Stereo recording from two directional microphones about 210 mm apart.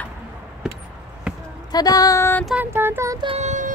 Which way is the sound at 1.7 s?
15° left (ahead or behind).